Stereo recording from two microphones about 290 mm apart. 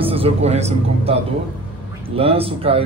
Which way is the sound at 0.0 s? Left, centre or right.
Centre.